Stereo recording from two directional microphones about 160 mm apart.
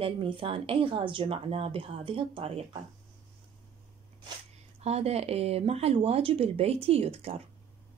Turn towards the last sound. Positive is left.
turn(degrees=-40)  # may be behind; listen again after turning